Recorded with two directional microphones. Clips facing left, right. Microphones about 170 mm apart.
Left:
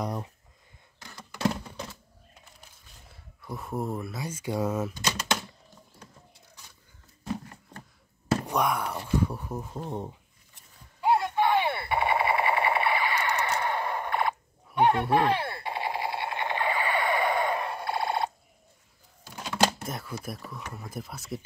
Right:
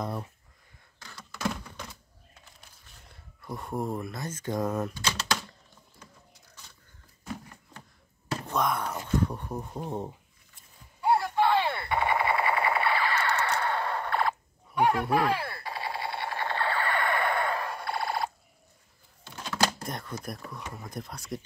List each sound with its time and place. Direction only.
0.0 s speech: 15° left (ahead or behind)
1.4 s a sound: 30° left (ahead or behind)
3.1 s speech: centre (ahead or behind)
8.5 s speech: 10° left (ahead or behind)
11.0 s machine gun: 20° left (ahead or behind)
14.8 s machine gun: 25° left (ahead or behind)
19.2 s a sound: 10° left (ahead or behind)
19.8 s speech: 5° left (ahead or behind)